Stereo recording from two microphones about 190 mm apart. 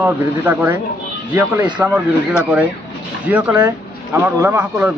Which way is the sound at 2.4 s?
5° right (ahead or behind).